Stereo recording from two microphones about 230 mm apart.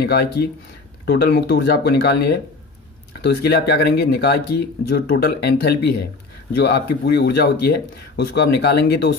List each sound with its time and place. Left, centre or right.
0.0 s speech: left